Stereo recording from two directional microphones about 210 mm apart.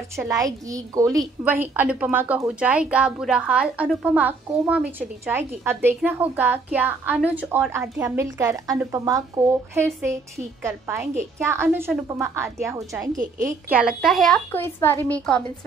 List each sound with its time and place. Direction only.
0.1 s speech: 15° right (ahead or behind)
1.1 s a woman's voice: 5° right (ahead or behind)